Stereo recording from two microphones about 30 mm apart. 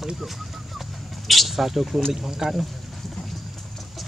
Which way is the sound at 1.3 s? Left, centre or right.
Centre.